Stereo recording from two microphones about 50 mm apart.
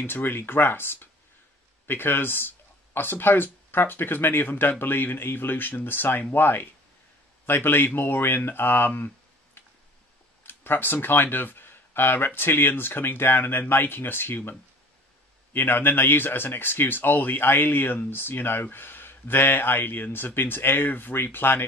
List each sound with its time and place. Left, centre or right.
0.0 s speech: left
15.5 s speech: left